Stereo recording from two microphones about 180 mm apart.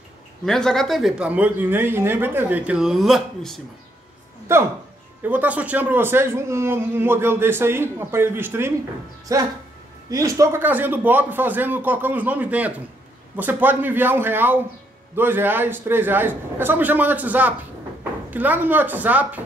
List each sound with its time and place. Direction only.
0.5 s speech: 5° left (ahead or behind)
5.2 s speech: 10° right (ahead or behind)